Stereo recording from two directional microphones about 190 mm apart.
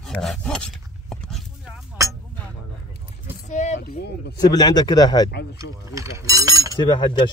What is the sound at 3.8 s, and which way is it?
Speech, 60° left (ahead or behind).